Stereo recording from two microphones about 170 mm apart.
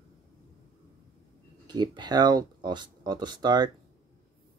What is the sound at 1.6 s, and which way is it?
Speech, 25° right (ahead or behind).